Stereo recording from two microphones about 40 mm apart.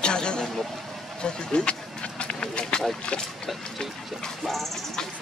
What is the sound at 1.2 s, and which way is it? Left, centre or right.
Run, left.